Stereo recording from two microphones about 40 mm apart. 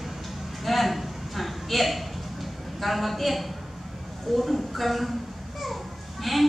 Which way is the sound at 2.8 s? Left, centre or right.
Centre.